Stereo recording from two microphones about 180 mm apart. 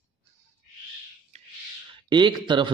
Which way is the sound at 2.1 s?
25° right (ahead or behind).